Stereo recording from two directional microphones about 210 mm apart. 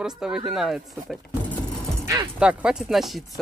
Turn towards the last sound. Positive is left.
turn(degrees=0)  # may be behind; listen again after turning